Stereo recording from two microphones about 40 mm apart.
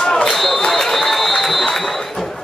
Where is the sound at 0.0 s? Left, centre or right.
Centre.